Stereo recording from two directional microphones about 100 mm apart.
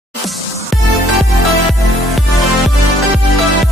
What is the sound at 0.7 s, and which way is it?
Music, centre (ahead or behind).